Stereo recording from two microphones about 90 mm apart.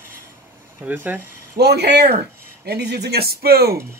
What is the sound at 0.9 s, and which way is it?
Speech, 20° right (ahead or behind).